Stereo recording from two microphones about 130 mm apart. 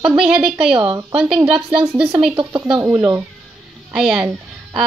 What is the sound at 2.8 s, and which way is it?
Speech, 20° right (ahead or behind).